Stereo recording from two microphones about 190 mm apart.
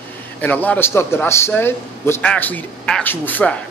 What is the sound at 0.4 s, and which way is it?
A man's voice, 10° left (ahead or behind).